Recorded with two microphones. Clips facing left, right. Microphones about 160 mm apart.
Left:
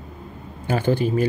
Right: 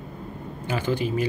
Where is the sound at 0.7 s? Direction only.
45° left (ahead or behind).